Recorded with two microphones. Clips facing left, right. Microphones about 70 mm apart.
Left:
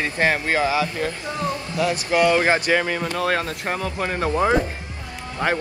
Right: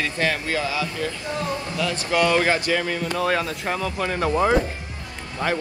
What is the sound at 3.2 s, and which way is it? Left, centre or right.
Speech, left.